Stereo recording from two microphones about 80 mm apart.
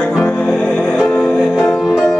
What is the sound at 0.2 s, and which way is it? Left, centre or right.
Music, centre.